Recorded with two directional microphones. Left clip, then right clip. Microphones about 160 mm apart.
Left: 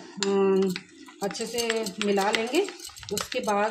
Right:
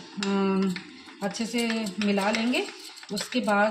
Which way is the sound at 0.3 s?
40° left (ahead or behind).